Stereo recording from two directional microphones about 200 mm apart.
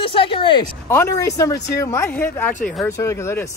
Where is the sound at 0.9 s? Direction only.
15° left (ahead or behind).